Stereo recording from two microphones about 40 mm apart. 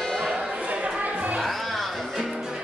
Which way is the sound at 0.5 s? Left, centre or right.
Right.